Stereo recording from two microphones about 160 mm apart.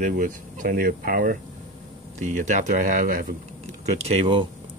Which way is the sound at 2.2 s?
50° right (ahead or behind).